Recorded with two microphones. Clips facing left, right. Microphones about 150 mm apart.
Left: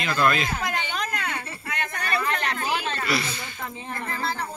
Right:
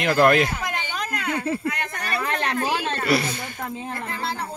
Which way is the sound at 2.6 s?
45° right (ahead or behind).